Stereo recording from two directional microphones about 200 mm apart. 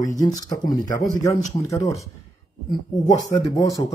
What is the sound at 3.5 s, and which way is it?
Speech, 15° left (ahead or behind).